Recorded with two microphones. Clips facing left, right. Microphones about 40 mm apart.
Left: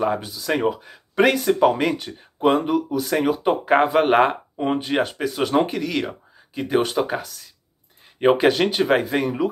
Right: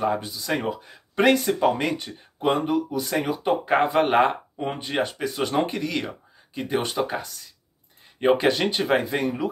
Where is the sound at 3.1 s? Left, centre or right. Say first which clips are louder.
Left 4 dB; centre.